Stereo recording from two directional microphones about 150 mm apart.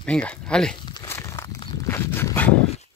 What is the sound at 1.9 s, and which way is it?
Dog, 15° left (ahead or behind).